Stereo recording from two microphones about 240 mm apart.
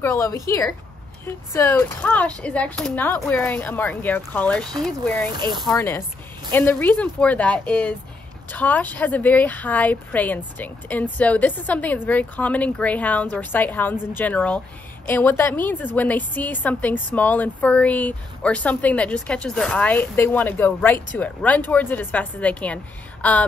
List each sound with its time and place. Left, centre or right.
0.0 s a woman's voice: centre
5.4 s speech: centre
5.7 s a woman's voice: centre